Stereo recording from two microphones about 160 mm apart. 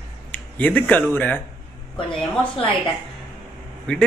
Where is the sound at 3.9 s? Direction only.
5° left (ahead or behind).